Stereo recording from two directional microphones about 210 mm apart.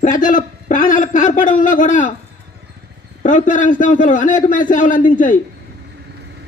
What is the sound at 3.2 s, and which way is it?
Speech, 35° left (ahead or behind).